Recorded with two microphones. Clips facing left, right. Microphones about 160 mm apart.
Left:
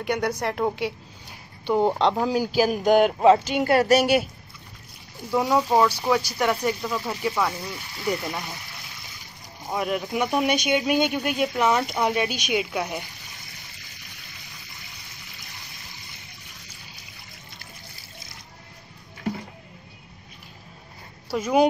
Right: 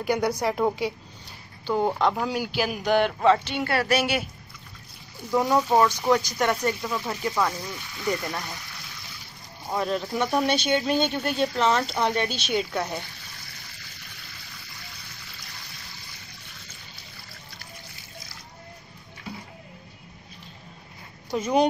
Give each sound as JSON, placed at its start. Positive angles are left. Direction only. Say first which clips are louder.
{"t": 0.0, "sound": "a woman's voice", "louder": "right 1 dB", "side_deg": 0}
{"t": 1.7, "sound": "speech", "louder": "left 3 dB", "side_deg": 20}
{"t": 5.3, "sound": "speech", "louder": "even", "side_deg": 10}
{"t": 9.8, "sound": "speech", "louder": "left 1 dB", "side_deg": 15}
{"t": 21.3, "sound": "speech", "louder": "left 2 dB", "side_deg": 5}